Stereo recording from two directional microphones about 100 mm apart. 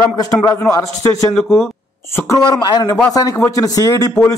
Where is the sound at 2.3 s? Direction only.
45° left (ahead or behind).